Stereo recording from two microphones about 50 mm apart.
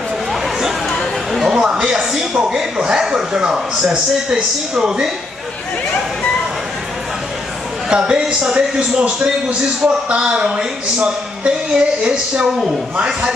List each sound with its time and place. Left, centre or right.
0.3 s a sound: centre
1.3 s a man's voice: centre
7.9 s a man's voice: centre